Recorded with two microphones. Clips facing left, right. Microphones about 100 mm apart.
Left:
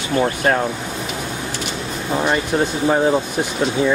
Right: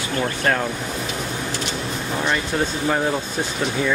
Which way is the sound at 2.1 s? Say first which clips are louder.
Left 4 dB; 20° left (ahead or behind).